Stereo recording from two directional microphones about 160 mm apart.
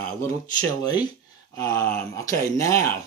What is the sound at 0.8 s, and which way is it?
Speech, 25° left (ahead or behind).